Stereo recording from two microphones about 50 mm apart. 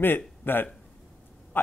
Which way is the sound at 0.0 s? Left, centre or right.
Left.